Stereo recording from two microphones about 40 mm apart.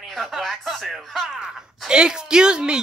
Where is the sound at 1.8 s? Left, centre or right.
Centre.